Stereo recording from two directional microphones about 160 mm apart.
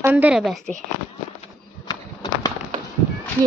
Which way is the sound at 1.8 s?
25° left (ahead or behind).